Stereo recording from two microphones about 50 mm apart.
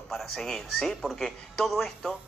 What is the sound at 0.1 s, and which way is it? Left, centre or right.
Speech, centre.